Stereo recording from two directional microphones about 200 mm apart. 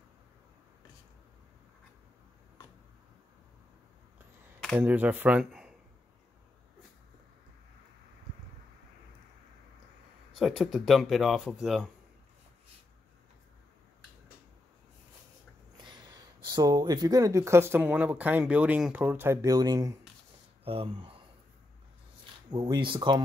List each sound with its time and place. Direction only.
4.7 s speech: 10° right (ahead or behind)
10.3 s speech: centre (ahead or behind)
15.8 s speech: 20° right (ahead or behind)
20.6 s speech: 30° right (ahead or behind)
22.5 s speech: 20° right (ahead or behind)